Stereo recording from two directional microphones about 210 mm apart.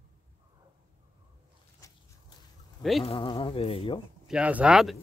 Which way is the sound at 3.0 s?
25° left (ahead or behind).